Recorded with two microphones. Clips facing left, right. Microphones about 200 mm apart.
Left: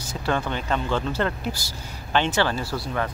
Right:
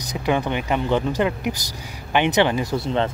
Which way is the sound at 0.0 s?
15° right (ahead or behind).